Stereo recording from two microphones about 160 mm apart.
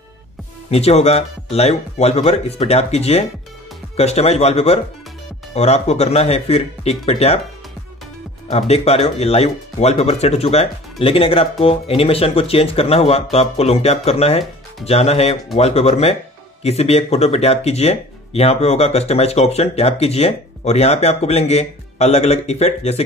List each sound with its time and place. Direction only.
0.7 s speech: 40° left (ahead or behind)
8.5 s speech: 40° left (ahead or behind)